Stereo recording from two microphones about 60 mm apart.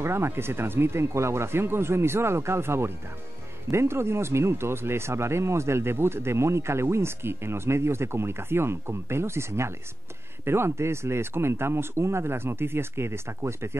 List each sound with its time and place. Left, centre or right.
0.0 s speech: right